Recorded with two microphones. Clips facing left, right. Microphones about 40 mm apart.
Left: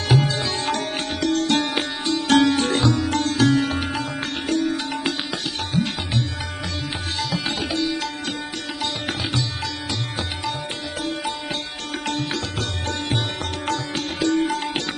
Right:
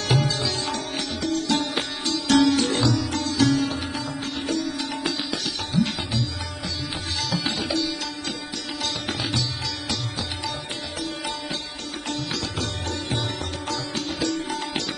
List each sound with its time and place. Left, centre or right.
0.2 s sitar: left
2.1 s sitar: left
7.6 s music: left
14.2 s music: left